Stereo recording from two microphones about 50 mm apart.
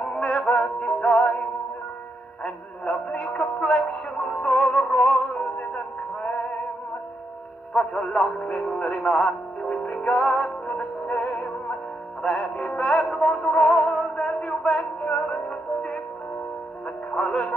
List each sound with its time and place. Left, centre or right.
0.0 s music: centre
2.4 s music: centre
7.7 s music: centre
15.0 s music: left
17.1 s speech: centre